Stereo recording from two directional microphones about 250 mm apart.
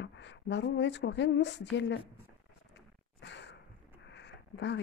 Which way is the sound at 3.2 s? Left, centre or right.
Left.